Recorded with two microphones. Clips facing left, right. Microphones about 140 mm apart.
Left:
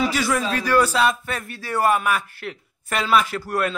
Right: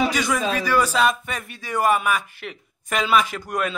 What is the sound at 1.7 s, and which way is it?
A man's voice, 10° right (ahead or behind).